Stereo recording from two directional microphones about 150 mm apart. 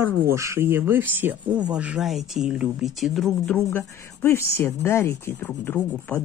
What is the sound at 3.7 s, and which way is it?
Speech, 15° left (ahead or behind).